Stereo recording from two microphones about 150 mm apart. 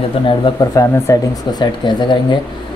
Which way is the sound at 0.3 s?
25° left (ahead or behind).